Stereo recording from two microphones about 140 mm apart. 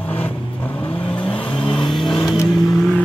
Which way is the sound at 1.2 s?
35° left (ahead or behind).